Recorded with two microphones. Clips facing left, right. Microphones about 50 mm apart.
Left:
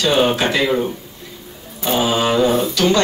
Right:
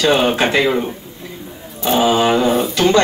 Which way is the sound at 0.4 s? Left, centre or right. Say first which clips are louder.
Right 2 dB; right.